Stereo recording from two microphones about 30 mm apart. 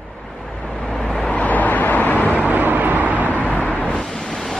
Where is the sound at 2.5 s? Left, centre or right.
Right.